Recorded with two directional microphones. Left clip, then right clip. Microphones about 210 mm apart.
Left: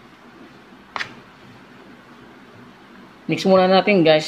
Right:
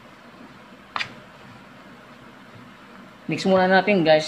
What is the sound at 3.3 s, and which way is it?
Speech, 25° left (ahead or behind).